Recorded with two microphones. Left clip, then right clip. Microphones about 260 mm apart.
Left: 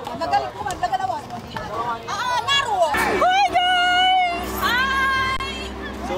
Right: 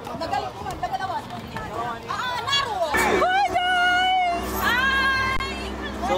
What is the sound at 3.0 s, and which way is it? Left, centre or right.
Music, centre.